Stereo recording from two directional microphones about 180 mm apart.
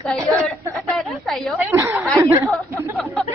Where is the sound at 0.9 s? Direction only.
Centre (ahead or behind).